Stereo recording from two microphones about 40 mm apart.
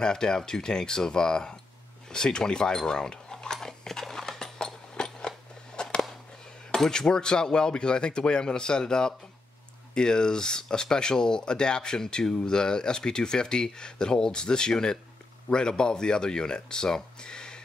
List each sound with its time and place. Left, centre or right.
0.0 s speech: centre
3.6 s a sound: centre
6.7 s speech: centre